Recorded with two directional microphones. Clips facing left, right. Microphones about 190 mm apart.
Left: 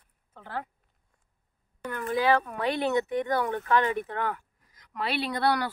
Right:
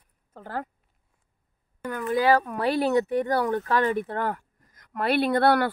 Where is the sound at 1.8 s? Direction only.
40° right (ahead or behind); by 5.6 s 55° right (ahead or behind).